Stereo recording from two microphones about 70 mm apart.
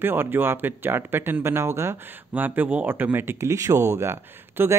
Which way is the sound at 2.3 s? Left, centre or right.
Right.